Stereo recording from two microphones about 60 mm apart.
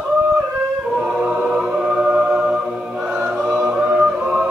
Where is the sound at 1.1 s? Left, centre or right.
Centre.